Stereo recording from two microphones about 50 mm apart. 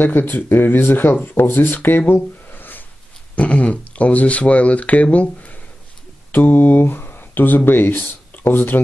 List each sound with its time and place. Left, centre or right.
0.0 s speech: left
3.3 s speech: left
6.3 s speech: left